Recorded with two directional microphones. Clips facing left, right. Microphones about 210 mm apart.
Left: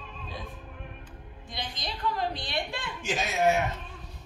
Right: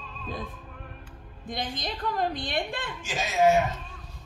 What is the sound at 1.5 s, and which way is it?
A woman's voice, 50° right (ahead or behind).